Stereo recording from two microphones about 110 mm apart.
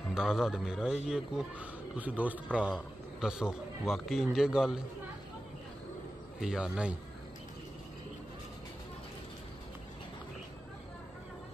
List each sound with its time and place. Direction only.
0.1 s a man's voice: 5° right (ahead or behind)
6.4 s speech: 5° right (ahead or behind)